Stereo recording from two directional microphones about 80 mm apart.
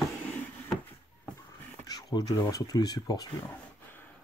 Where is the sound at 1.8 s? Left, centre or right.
Left.